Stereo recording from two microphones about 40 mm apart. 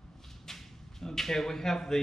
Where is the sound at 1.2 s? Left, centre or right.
Centre.